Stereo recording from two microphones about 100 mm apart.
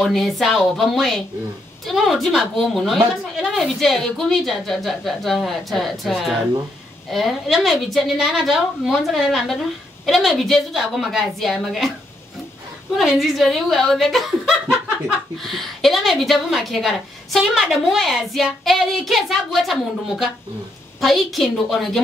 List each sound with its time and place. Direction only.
0.0 s a woman's voice: centre (ahead or behind)
13.2 s a woman's voice: centre (ahead or behind)
15.3 s a woman's voice: centre (ahead or behind)